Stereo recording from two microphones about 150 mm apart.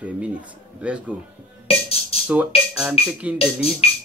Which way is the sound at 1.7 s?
40° left (ahead or behind).